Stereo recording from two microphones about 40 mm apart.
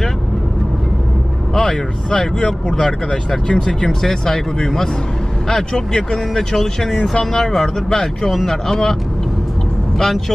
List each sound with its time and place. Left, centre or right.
1.5 s speech: centre
8.3 s speech: centre
8.6 s speech: centre
9.9 s speech: centre